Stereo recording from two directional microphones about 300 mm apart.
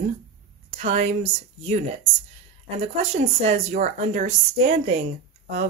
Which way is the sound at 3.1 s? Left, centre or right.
Right.